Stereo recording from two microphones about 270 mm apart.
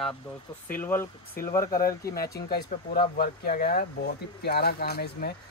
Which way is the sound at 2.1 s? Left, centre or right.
Left.